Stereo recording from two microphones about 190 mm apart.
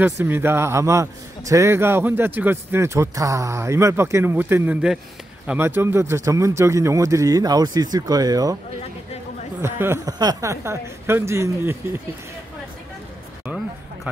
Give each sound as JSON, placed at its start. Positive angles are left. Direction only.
{"t": 0.0, "sound": "a man's voice", "side_deg": -10}
{"t": 9.6, "sound": "a man's voice", "side_deg": -15}